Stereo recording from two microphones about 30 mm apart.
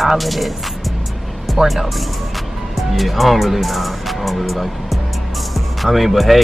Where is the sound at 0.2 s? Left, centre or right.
Centre.